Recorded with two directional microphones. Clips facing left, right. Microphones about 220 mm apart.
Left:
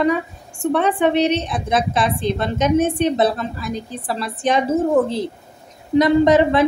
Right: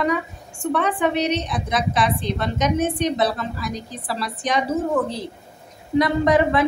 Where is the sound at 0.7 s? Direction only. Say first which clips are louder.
Left 4 dB; 25° left (ahead or behind).